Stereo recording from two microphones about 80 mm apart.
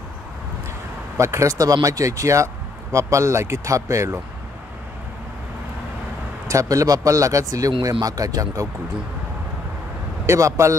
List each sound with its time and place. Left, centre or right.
1.1 s speech: right
6.5 s speech: right
10.2 s speech: right